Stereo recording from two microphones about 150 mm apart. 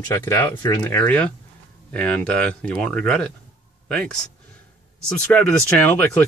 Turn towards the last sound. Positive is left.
turn(degrees=10)  # may be behind; listen again after turning